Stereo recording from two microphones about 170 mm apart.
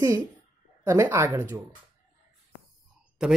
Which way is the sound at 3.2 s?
5° right (ahead or behind).